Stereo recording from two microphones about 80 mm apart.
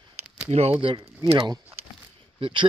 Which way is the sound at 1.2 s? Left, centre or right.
Right.